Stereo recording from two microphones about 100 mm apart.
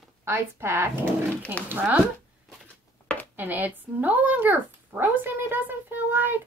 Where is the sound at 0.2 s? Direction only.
25° right (ahead or behind).